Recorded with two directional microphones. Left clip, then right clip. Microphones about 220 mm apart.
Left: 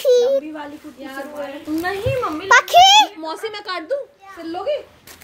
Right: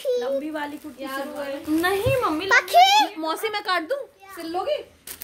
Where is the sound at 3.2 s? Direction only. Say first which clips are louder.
Right 1 dB; 35° right (ahead or behind).